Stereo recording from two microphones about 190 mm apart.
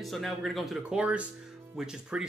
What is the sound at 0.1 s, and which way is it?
Speech, centre (ahead or behind).